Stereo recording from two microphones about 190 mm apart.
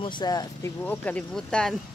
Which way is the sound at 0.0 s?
20° left (ahead or behind).